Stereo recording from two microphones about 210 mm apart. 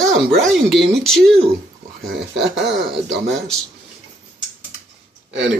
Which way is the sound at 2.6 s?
55° right (ahead or behind).